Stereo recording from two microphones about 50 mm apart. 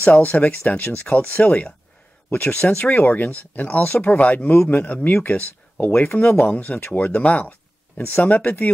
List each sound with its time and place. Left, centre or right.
0.0 s speech: left